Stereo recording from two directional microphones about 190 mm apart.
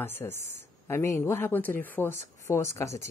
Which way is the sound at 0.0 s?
10° left (ahead or behind).